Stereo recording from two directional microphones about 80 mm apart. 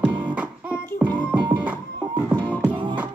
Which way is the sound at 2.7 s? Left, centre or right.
Right.